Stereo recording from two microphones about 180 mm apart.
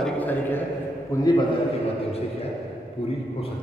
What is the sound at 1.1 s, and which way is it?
Speech, 20° left (ahead or behind).